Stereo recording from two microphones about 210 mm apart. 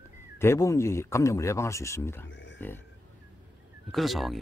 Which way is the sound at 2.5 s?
10° left (ahead or behind).